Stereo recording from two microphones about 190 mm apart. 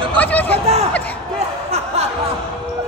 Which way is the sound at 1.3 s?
35° right (ahead or behind).